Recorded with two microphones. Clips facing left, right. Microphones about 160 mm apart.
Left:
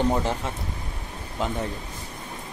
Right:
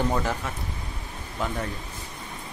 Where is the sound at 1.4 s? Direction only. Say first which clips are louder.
Left 2 dB; 20° left (ahead or behind).